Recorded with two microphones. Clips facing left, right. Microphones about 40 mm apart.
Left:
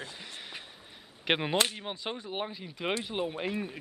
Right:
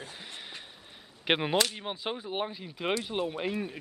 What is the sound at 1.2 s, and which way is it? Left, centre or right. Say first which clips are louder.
Speech: right 1 dB; centre.